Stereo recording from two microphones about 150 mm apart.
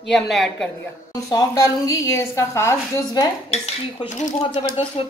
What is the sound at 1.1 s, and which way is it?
A woman's voice, 25° left (ahead or behind).